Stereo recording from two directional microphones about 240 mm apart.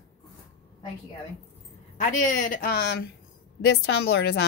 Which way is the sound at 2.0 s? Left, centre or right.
Left.